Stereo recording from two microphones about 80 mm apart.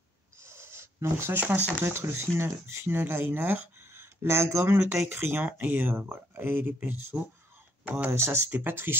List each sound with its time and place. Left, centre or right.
0.4 s a sound: right
1.4 s speech: right
3.9 s speech: right; by 8.1 s centre
8.1 s speech: right